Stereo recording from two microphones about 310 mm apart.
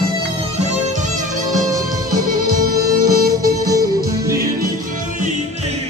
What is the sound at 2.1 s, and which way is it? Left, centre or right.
Music, right.